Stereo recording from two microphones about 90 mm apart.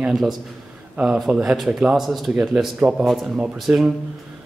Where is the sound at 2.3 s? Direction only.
10° right (ahead or behind).